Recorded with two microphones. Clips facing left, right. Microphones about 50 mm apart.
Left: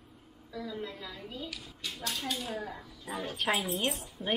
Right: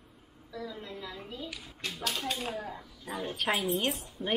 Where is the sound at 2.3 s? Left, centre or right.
Right.